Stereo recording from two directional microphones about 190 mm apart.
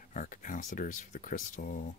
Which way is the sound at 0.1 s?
45° left (ahead or behind).